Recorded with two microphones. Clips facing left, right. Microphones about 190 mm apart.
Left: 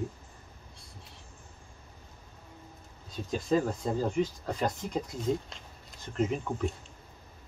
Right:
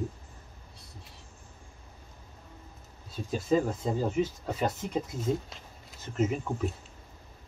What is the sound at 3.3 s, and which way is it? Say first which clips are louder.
Speech: right 1 dB; 5° right (ahead or behind).